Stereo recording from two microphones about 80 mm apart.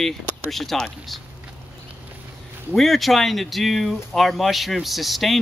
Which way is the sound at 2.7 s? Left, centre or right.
Centre.